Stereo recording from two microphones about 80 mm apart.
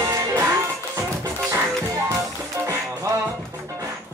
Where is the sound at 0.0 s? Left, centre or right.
Right.